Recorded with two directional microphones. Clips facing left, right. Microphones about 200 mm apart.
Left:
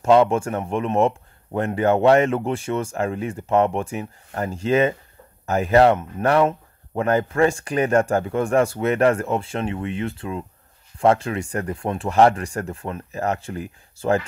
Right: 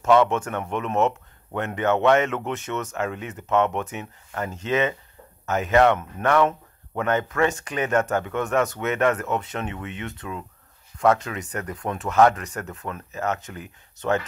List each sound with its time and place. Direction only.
0.0 s speech: 30° left (ahead or behind)